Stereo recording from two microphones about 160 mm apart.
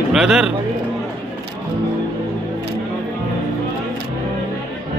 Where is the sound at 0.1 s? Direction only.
5° right (ahead or behind).